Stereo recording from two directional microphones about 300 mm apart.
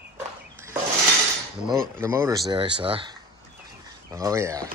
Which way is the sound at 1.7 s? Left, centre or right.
Centre.